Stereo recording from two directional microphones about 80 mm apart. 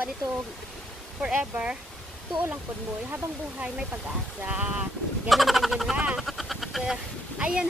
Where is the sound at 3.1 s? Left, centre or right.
Centre.